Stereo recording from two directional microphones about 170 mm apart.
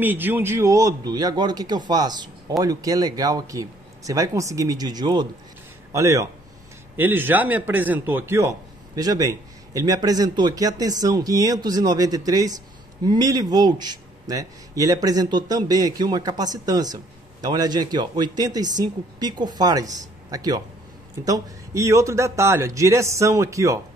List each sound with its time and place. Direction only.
0.0 s a man's voice: 10° right (ahead or behind)